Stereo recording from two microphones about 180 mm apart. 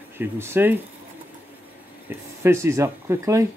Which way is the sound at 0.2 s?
10° right (ahead or behind).